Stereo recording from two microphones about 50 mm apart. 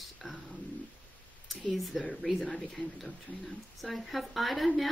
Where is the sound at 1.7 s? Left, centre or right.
Centre.